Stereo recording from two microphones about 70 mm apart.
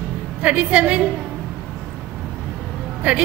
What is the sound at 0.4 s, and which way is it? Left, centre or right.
Speech, centre.